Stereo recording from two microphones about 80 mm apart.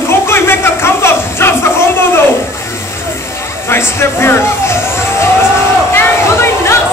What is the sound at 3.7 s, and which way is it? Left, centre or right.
Speech, left.